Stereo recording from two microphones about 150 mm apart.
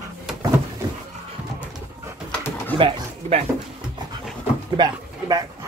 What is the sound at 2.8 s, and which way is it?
Speech, 35° right (ahead or behind).